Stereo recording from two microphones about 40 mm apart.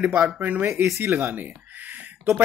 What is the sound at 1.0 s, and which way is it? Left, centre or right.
Speech, right.